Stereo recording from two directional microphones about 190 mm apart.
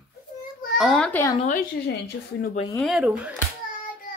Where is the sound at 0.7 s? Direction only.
5° left (ahead or behind).